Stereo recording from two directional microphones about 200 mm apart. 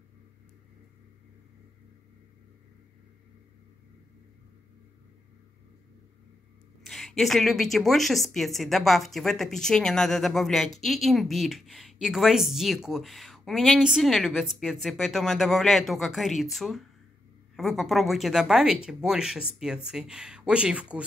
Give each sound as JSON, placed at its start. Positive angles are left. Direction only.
{"t": 6.8, "sound": "a woman's voice", "side_deg": 0}